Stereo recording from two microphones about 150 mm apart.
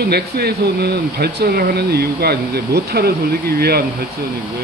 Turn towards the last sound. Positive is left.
turn(degrees=-90)